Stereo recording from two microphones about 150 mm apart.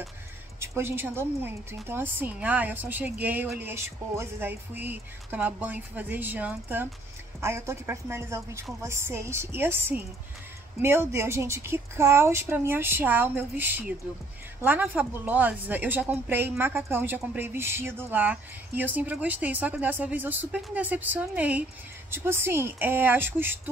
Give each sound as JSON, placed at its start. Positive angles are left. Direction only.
{"t": 0.6, "sound": "a woman's voice", "side_deg": -15}